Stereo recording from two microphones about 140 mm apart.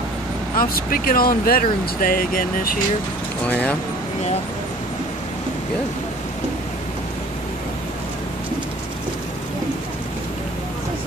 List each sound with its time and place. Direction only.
0.6 s speech: 90° left
3.4 s speech: 10° left (ahead or behind)